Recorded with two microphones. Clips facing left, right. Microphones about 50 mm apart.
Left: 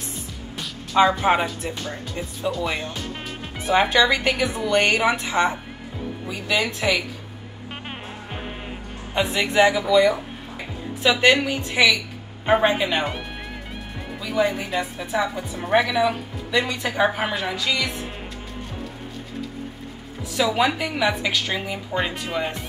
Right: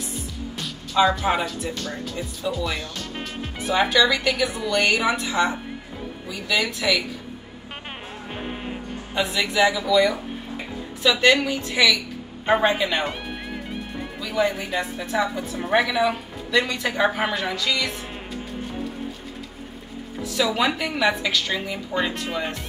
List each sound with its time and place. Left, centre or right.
0.9 s a woman's voice: left
3.9 s a woman's voice: left
9.1 s a woman's voice: left
12.4 s a woman's voice: centre
14.2 s a woman's voice: centre
16.5 s a woman's voice: centre
20.3 s a woman's voice: centre